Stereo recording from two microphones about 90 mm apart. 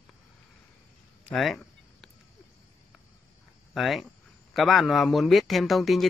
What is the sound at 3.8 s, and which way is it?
A man's voice, centre (ahead or behind).